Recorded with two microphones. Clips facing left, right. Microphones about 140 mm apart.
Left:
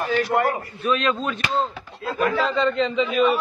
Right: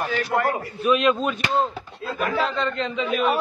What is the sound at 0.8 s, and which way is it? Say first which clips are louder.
Speech: right 3 dB; 10° right (ahead or behind).